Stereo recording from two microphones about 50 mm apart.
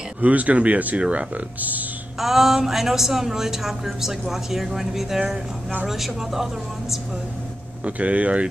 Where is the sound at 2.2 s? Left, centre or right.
Centre.